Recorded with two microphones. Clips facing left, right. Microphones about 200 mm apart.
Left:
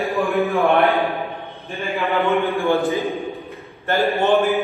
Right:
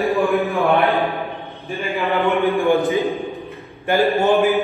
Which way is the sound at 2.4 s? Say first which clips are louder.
Right 3 dB; centre (ahead or behind).